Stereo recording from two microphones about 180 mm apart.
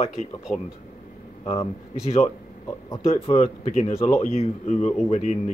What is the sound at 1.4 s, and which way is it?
Speech, 30° left (ahead or behind).